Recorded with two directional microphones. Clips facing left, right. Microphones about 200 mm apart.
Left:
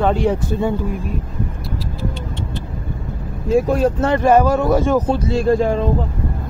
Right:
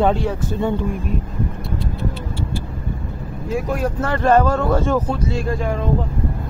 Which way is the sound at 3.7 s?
25° left (ahead or behind).